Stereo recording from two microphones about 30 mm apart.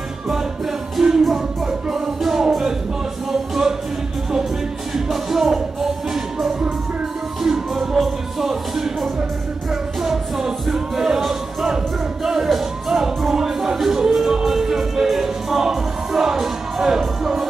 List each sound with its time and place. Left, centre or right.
1.0 s music: centre
1.3 s music: centre
4.9 s music: centre